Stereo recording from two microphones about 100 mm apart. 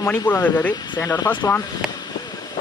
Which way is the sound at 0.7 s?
45° left (ahead or behind).